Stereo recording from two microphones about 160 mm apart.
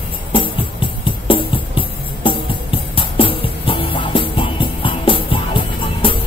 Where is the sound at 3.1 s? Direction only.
35° left (ahead or behind).